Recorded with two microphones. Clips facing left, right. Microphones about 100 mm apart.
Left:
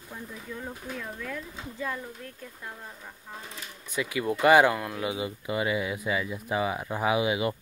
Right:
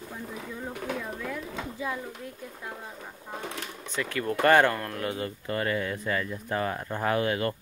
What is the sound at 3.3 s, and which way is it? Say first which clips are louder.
Speech: right 7 dB; 70° right (ahead or behind).